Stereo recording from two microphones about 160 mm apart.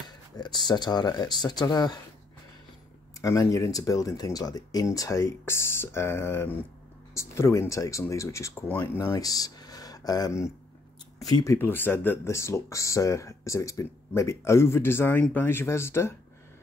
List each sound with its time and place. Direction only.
0.4 s speech: 25° left (ahead or behind)
3.2 s speech: 20° left (ahead or behind)